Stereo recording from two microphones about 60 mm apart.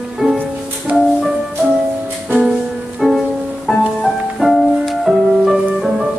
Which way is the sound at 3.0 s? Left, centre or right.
Centre.